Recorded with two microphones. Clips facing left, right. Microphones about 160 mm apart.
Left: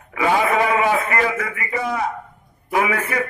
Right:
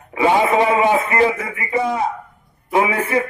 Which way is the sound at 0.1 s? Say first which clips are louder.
Right 3 dB; 25° right (ahead or behind).